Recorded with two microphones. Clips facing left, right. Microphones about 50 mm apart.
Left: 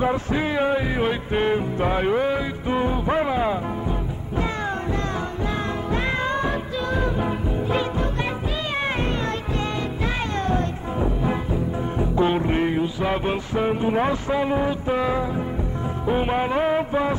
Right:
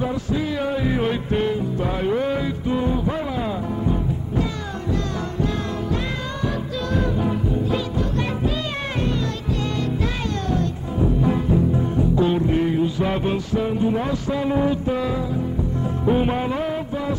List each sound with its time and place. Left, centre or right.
0.0 s music: left
0.8 s music: centre
1.4 s music: left
2.1 s music: centre
2.7 s music: left
6.9 s music: centre
10.5 s cat: left
12.0 s music: left
12.8 s music: centre
13.3 s music: left
15.0 s music: left
16.1 s music: centre
16.5 s a sound: left